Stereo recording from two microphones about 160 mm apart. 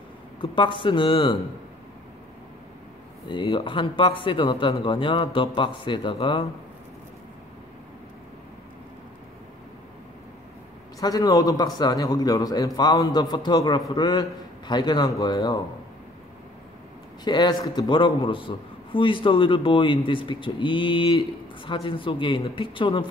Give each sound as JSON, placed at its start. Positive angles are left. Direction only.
{"t": 0.4, "sound": "a man's voice", "side_deg": 30}
{"t": 3.3, "sound": "a man's voice", "side_deg": 35}
{"t": 11.0, "sound": "a man's voice", "side_deg": 20}
{"t": 17.2, "sound": "a man's voice", "side_deg": 25}